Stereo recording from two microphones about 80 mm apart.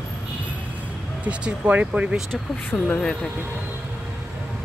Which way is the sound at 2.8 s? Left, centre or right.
Centre.